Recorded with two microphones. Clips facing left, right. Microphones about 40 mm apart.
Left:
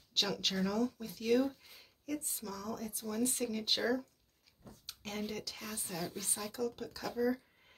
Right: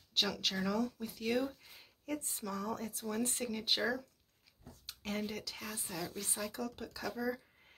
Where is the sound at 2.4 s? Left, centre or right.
Right.